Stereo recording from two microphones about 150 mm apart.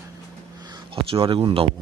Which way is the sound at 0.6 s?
30° right (ahead or behind).